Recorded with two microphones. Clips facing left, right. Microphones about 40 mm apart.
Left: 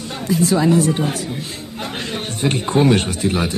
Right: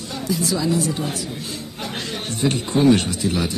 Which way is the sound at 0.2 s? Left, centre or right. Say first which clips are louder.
Left 6 dB; left.